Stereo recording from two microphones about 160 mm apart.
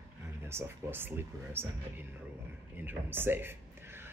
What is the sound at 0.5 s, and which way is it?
Speech, 15° right (ahead or behind).